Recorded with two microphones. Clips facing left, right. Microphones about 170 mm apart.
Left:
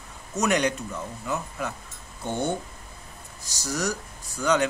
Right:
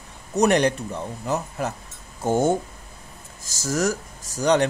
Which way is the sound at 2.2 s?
90° right.